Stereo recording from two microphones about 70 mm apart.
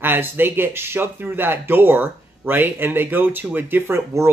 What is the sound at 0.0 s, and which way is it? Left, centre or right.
Speech, right.